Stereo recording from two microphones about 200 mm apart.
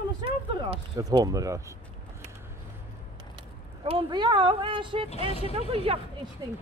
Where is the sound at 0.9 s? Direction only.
20° right (ahead or behind).